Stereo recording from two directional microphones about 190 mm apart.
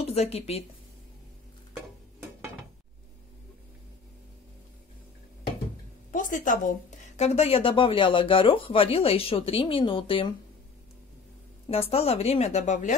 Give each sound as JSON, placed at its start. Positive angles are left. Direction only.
{"t": 0.0, "sound": "a woman's voice", "side_deg": 35}
{"t": 6.1, "sound": "a woman's voice", "side_deg": 45}
{"t": 11.7, "sound": "speech", "side_deg": 30}